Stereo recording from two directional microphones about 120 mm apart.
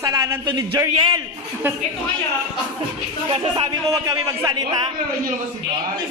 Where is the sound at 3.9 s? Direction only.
30° right (ahead or behind).